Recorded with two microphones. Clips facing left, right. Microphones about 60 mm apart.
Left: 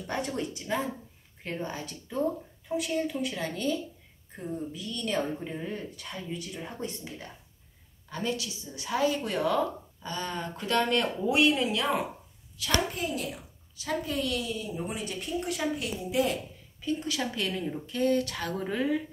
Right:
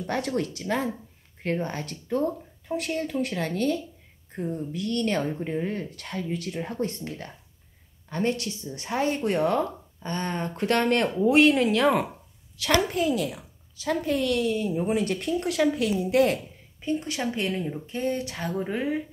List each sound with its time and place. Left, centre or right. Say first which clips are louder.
0.0 s a woman's voice: right 5 dB; right
1.4 s a woman's voice: right 6 dB; right
8.1 s speech: right 5 dB; right
12.5 s a woman's voice: right 6 dB; right
16.8 s a woman's voice: right 3 dB; right